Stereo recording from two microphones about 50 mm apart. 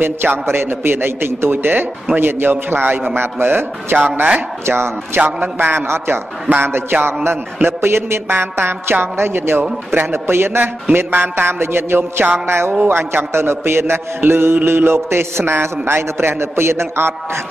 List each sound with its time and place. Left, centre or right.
0.0 s a man's voice: right
4.6 s a man's voice: right
6.5 s a sound: right
6.9 s a man's voice: right
12.0 s a sound: right
12.4 s a man's voice: right